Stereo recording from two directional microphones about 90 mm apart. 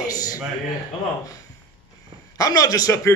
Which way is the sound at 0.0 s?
45° left (ahead or behind).